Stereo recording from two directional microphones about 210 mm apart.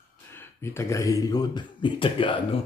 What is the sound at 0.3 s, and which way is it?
Speech, 10° left (ahead or behind).